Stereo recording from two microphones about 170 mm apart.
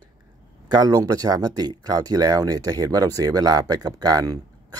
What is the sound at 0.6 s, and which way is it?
Speech, 25° right (ahead or behind).